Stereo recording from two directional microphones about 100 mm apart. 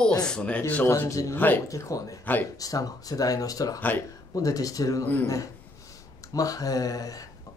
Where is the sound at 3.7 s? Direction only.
20° left (ahead or behind).